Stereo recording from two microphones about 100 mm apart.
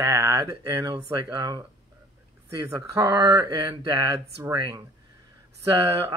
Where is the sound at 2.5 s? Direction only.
35° right (ahead or behind).